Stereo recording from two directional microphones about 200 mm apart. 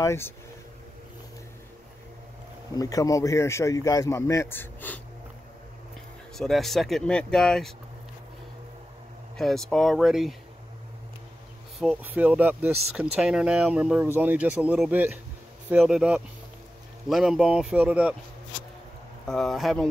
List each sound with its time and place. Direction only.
0.0 s a man's voice: 15° left (ahead or behind)
2.7 s a man's voice: 15° left (ahead or behind)
6.3 s speech: centre (ahead or behind)
9.4 s speech: centre (ahead or behind)
11.8 s speech: 5° right (ahead or behind)
19.2 s speech: centre (ahead or behind)